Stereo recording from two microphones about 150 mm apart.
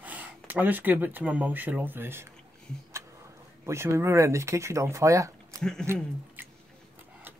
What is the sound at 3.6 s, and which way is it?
Speech, 15° right (ahead or behind).